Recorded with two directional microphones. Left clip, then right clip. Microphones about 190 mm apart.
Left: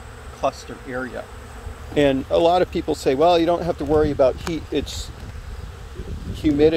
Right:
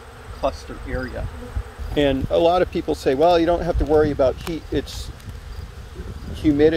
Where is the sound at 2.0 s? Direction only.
20° left (ahead or behind).